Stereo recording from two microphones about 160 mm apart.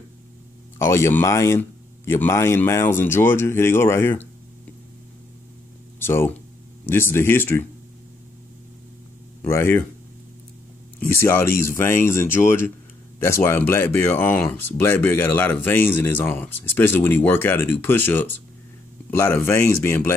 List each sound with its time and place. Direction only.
0.7 s speech: 15° left (ahead or behind)
5.9 s speech: 15° left (ahead or behind)
9.4 s speech: 15° left (ahead or behind)
11.0 s speech: 15° left (ahead or behind)